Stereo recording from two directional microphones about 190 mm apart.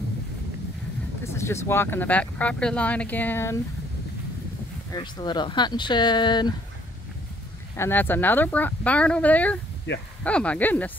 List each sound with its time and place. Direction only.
1.2 s speech: 15° left (ahead or behind)
4.9 s speech: 25° left (ahead or behind)
7.7 s speech: 10° left (ahead or behind)
9.9 s speech: 65° left (ahead or behind)
10.2 s speech: 5° left (ahead or behind)